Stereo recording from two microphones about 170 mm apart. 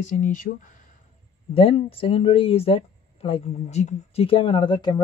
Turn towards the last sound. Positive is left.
turn(degrees=25)  # may be behind; listen again after turning